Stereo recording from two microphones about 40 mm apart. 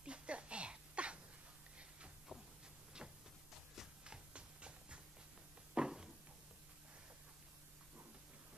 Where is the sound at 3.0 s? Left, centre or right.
Right.